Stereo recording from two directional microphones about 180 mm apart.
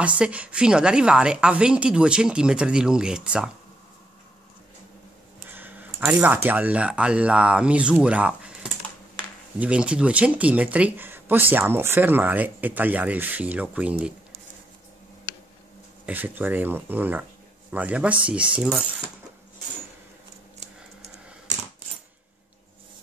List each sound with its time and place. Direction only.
0.2 s a woman's voice: 5° right (ahead or behind)
5.5 s speech: 10° right (ahead or behind)
9.6 s speech: 5° right (ahead or behind)
16.1 s speech: 10° right (ahead or behind)